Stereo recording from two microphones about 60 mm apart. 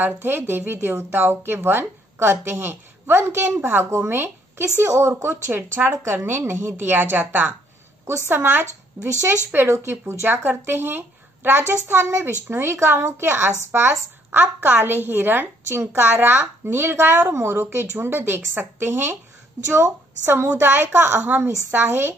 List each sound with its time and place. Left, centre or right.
0.0 s a woman's voice: right